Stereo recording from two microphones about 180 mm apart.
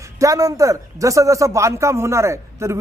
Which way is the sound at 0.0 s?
20° right (ahead or behind).